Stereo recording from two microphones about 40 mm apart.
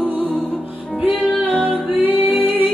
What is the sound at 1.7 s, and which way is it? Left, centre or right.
Music, right.